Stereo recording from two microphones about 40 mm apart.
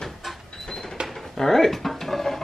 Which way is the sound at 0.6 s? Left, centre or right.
Centre.